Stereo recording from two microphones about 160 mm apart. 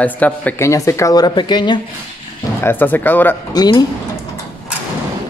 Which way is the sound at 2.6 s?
10° left (ahead or behind).